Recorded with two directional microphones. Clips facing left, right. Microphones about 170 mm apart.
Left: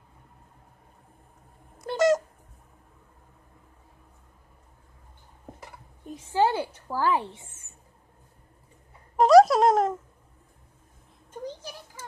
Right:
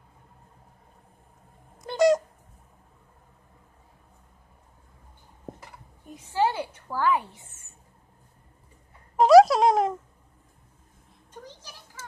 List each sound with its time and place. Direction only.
1.9 s cat: centre (ahead or behind)
6.1 s a woman's voice: 30° left (ahead or behind)
9.1 s a sound: centre (ahead or behind)